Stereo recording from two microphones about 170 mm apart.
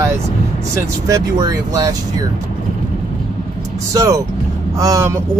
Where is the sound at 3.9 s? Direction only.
20° right (ahead or behind).